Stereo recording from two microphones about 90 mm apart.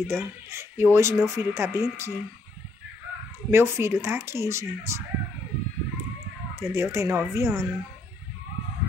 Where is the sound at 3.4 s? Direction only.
30° right (ahead or behind).